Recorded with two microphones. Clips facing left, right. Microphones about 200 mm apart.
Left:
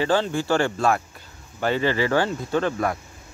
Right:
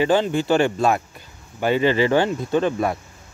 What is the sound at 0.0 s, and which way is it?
Speech, 15° right (ahead or behind).